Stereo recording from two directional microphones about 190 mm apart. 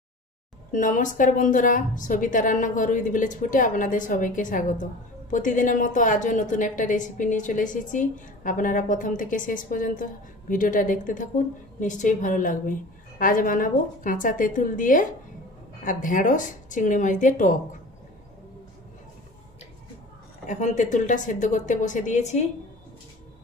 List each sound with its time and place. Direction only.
0.7 s a woman's voice: 45° left (ahead or behind)
20.4 s a woman's voice: 40° left (ahead or behind)